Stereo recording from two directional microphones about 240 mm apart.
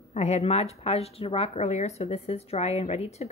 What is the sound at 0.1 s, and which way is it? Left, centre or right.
Speech, left.